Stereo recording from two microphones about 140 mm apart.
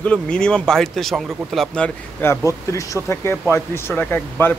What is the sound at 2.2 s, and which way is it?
A man's voice, 20° left (ahead or behind).